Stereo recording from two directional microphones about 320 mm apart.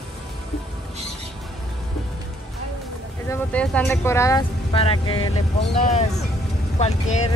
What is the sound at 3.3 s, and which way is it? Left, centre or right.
Speech, centre.